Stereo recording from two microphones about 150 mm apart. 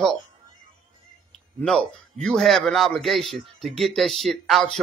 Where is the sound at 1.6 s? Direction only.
5° left (ahead or behind).